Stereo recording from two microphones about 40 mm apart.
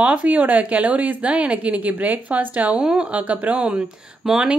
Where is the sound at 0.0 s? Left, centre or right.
Right.